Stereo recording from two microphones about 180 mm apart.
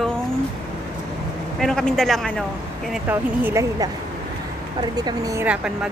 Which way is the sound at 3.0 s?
10° right (ahead or behind).